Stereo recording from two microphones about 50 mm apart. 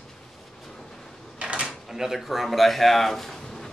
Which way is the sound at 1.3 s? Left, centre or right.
Right.